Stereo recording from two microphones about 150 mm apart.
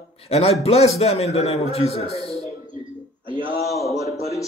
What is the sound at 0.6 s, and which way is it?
A man's voice, 45° left (ahead or behind).